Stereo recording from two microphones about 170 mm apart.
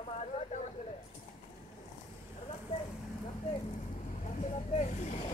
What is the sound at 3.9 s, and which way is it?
Vehicle, 50° left (ahead or behind).